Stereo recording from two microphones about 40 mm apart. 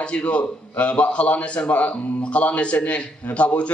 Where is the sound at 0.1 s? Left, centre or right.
Left.